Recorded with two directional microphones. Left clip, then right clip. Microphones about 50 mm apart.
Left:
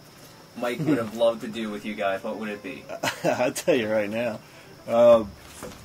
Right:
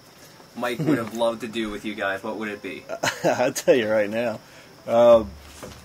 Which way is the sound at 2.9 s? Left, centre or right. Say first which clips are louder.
Right 3 dB; right.